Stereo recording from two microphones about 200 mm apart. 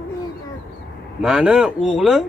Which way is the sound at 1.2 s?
5° right (ahead or behind).